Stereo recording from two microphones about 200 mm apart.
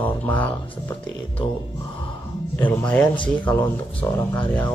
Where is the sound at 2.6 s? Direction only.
5° left (ahead or behind).